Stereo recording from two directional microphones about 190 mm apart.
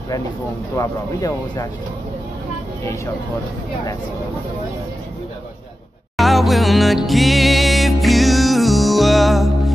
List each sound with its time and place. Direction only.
0.7 s speech: 20° left (ahead or behind)
6.1 s music: centre (ahead or behind)